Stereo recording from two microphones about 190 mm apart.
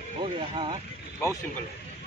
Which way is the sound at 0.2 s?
25° right (ahead or behind).